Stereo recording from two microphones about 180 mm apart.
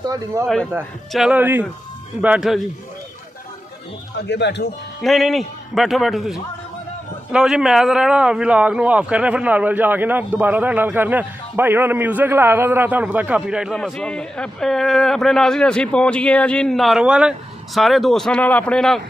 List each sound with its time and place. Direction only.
0.0 s speech: 15° right (ahead or behind)
1.1 s a man's voice: 5° right (ahead or behind)
4.3 s speech: 75° left (ahead or behind)
5.0 s a man's voice: centre (ahead or behind)